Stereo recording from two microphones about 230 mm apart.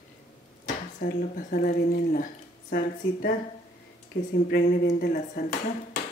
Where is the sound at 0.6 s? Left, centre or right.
Left.